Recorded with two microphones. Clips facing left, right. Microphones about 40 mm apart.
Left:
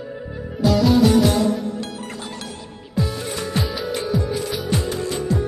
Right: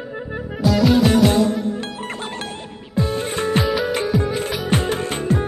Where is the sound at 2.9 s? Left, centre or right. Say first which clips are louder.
Right 3 dB; right.